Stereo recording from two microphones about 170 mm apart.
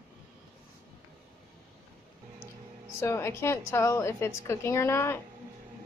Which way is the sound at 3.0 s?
15° left (ahead or behind).